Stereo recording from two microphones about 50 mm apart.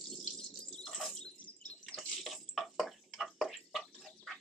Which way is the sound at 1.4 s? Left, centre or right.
Left.